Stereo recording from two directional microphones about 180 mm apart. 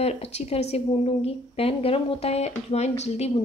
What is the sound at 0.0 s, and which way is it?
Speech, 35° left (ahead or behind).